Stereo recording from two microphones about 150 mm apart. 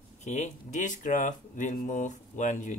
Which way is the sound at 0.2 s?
50° left (ahead or behind).